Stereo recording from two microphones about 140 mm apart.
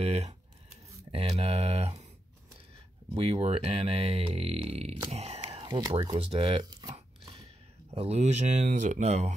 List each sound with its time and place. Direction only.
0.0 s speech: 45° right (ahead or behind)
3.2 s speech: 45° right (ahead or behind); by 6.1 s 30° right (ahead or behind)
6.1 s speech: 40° right (ahead or behind)
6.6 s a sound: 25° right (ahead or behind)
7.9 s speech: 50° right (ahead or behind)